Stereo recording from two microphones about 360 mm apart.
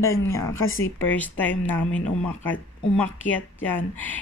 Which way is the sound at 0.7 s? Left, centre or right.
Left.